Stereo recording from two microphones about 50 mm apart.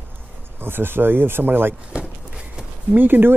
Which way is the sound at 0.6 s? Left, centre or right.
Right.